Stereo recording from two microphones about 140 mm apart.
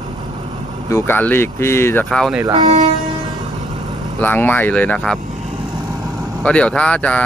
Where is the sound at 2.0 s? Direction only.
Centre (ahead or behind).